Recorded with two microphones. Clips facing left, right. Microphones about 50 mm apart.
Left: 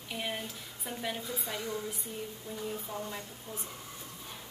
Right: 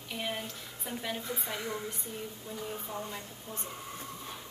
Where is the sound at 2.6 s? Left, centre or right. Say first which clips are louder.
Even; centre.